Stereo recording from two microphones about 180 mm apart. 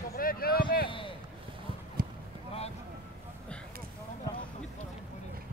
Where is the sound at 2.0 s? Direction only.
55° right (ahead or behind).